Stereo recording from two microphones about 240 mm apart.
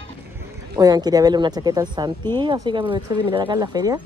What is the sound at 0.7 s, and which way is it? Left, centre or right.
Speech, centre.